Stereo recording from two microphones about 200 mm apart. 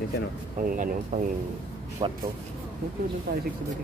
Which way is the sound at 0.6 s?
45° right (ahead or behind).